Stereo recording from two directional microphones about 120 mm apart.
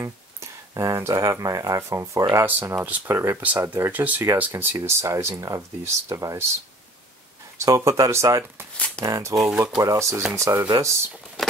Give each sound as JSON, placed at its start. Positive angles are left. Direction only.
{"t": 0.0, "sound": "speech", "side_deg": -25}
{"t": 7.6, "sound": "speech", "side_deg": -25}
{"t": 8.7, "sound": "shuffling cards", "side_deg": 10}
{"t": 9.0, "sound": "speech", "side_deg": -25}
{"t": 9.4, "sound": "speech", "side_deg": -5}
{"t": 9.8, "sound": "speech", "side_deg": -25}